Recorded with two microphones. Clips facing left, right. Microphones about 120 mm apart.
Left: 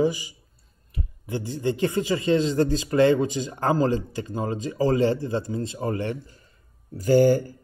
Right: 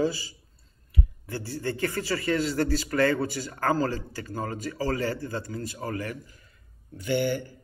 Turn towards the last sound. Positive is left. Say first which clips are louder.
# left 9 dB
turn(degrees=40)  # may be behind; listen again after turning